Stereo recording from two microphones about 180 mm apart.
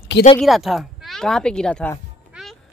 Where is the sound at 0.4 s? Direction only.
Centre (ahead or behind).